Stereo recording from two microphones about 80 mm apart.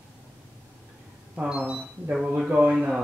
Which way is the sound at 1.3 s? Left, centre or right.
Centre.